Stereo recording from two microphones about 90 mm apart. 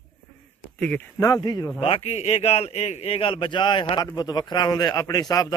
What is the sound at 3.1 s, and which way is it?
Speech, 80° left.